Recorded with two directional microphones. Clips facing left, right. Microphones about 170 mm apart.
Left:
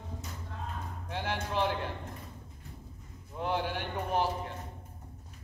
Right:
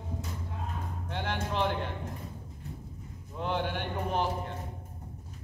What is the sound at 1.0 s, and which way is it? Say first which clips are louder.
Music: right 1 dB; 10° left (ahead or behind).